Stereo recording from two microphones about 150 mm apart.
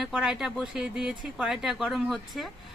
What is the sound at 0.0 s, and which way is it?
Speech, 5° right (ahead or behind).